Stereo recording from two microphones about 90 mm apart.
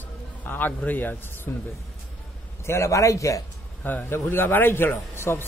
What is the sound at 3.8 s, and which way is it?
A man's voice, 20° left (ahead or behind).